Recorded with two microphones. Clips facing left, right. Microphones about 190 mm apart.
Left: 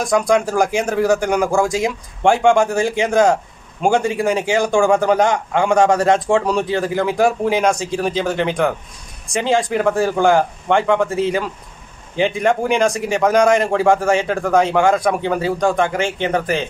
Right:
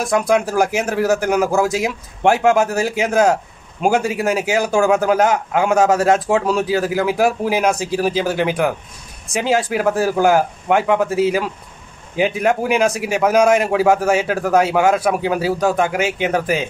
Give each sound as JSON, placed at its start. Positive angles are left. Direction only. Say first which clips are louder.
{"t": 0.0, "sound": "a man's voice", "louder": "left 1 dB", "side_deg": -5}